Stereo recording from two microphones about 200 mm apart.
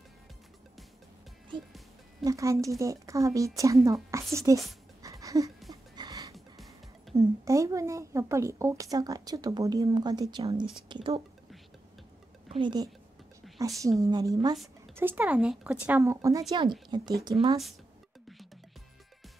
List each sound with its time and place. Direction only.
1.5 s a woman's voice: 25° right (ahead or behind)
5.0 s a sound: 15° right (ahead or behind)
6.3 s music: centre (ahead or behind)
7.2 s a woman's voice: 15° right (ahead or behind)
12.4 s a woman's voice: 25° right (ahead or behind)